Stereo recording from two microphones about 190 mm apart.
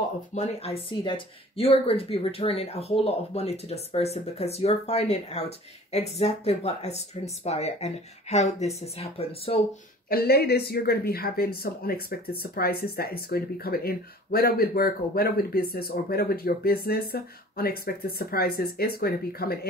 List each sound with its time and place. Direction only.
0.3 s speech: 35° left (ahead or behind)
10.0 s speech: 55° left (ahead or behind)